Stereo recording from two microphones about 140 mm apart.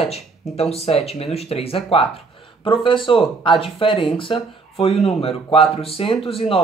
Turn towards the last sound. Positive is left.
turn(degrees=40)  # may be behind; listen again after turning